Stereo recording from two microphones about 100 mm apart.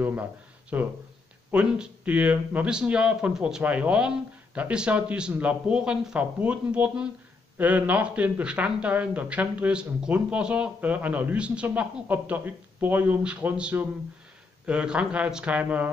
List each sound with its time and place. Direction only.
0.0 s speech: 15° right (ahead or behind)